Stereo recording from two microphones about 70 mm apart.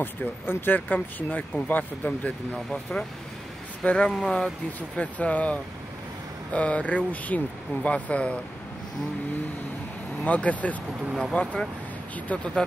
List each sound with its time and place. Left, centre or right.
0.0 s speech: left
10.2 s speech: left